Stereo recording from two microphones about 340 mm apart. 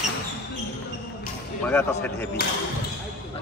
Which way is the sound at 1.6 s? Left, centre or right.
Centre.